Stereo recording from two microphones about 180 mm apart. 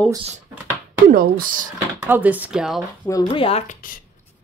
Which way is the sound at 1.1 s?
55° right (ahead or behind).